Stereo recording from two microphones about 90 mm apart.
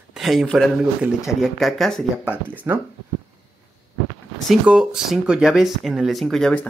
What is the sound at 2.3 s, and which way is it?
Speech, 20° right (ahead or behind).